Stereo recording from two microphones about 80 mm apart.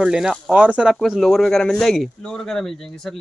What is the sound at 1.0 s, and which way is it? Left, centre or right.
A man's voice, centre.